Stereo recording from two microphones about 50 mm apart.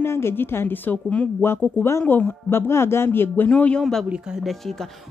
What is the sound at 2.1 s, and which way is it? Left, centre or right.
Speech, left.